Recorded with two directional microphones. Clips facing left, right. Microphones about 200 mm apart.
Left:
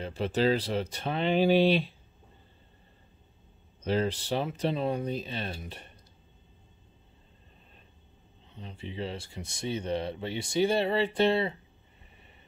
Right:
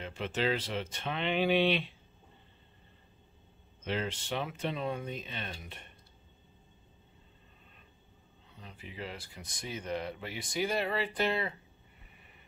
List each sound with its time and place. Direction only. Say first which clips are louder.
0.0 s speech: left 6 dB; 35° left (ahead or behind)
3.8 s speech: left 7 dB; 35° left (ahead or behind)
8.5 s speech: left 7 dB; 25° left (ahead or behind)